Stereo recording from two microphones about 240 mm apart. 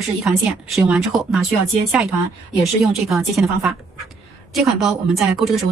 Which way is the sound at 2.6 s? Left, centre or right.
Centre.